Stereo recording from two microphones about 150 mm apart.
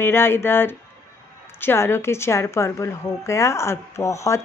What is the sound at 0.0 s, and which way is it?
A woman's voice, 15° left (ahead or behind).